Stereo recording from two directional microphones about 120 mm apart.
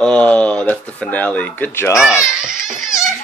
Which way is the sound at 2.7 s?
5° right (ahead or behind).